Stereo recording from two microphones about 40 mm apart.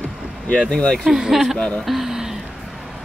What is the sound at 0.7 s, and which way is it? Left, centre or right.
Speech, centre.